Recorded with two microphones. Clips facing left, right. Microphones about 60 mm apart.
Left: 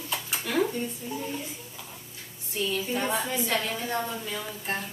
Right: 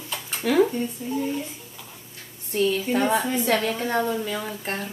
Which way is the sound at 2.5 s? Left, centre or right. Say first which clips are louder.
Right 7 dB; right.